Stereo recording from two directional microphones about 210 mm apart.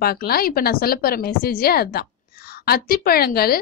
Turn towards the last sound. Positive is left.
turn(degrees=45)  # may be behind; listen again after turning